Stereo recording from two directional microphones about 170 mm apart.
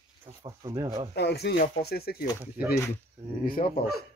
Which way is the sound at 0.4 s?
20° right (ahead or behind).